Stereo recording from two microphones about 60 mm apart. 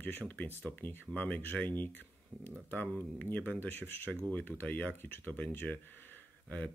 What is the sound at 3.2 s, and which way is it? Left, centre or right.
Speech, left.